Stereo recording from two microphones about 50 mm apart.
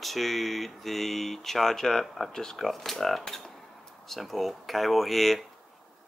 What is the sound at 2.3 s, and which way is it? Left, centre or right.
Speech, centre.